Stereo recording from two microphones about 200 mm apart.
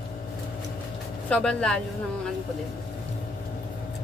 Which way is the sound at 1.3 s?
5° left (ahead or behind).